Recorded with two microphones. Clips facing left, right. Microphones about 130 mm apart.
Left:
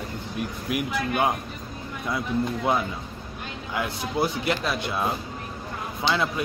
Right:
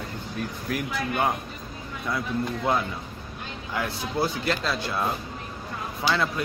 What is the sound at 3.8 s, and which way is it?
Speech, 20° left (ahead or behind).